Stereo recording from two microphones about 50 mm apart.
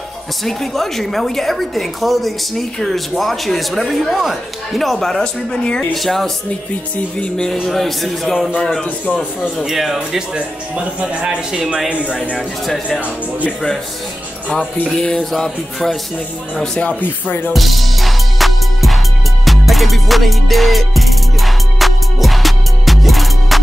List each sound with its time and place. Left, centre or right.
0.4 s a woman's voice: centre
5.9 s a woman's voice: centre
7.2 s speech: centre
7.6 s a woman's voice: centre
8.8 s speech: left
9.7 s a woman's voice: centre
9.9 s speech: centre
12.4 s a woman's voice: centre
14.5 s a woman's voice: centre
16.8 s speech: left
17.5 s music: centre